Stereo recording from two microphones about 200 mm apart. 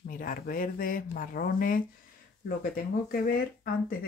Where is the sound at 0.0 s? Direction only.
45° left (ahead or behind).